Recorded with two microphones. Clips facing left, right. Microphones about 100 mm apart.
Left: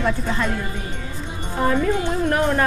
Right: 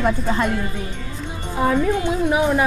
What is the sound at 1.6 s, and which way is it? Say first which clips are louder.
Speech: right 1 dB; 5° right (ahead or behind).